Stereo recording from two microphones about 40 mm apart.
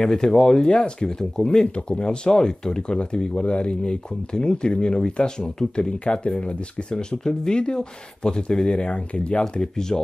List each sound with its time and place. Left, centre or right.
0.0 s speech: centre
9.4 s speech: centre